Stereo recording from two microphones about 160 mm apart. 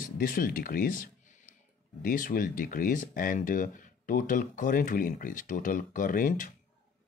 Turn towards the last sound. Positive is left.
turn(degrees=55)  # may be behind; listen again after turning